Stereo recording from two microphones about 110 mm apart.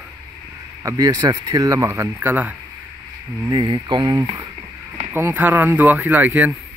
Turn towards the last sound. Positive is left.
turn(degrees=-10)  # may be behind; listen again after turning